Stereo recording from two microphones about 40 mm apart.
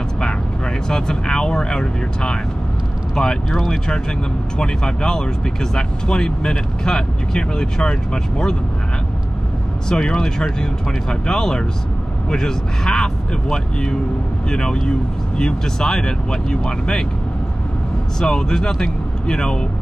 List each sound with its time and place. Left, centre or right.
0.8 s speech: centre
9.8 s speech: centre
18.2 s speech: centre